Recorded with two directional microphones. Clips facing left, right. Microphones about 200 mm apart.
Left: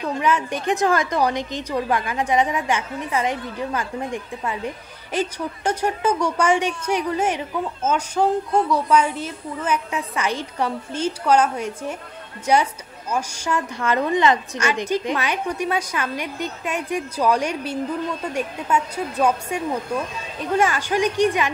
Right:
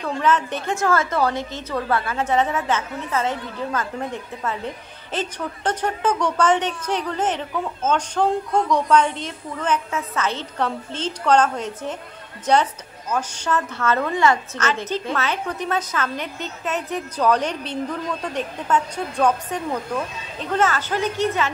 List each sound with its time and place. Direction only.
0.0 s a woman's voice: 10° left (ahead or behind)